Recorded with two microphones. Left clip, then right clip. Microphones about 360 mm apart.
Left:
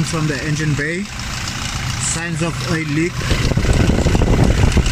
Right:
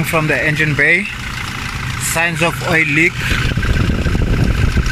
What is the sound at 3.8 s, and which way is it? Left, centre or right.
Vehicle, left.